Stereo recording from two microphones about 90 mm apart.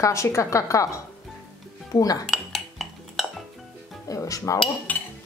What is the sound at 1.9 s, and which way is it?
Dishes, 45° left (ahead or behind).